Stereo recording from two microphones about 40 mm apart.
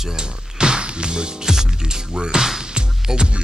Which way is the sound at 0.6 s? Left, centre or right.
Right.